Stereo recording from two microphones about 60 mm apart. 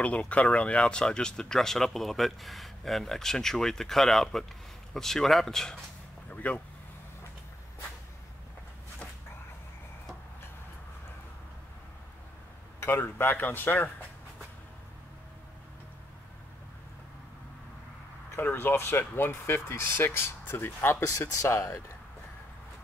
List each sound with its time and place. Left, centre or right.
0.0 s speech: left
6.3 s speech: left
12.8 s speech: left
18.3 s speech: left
21.3 s speech: left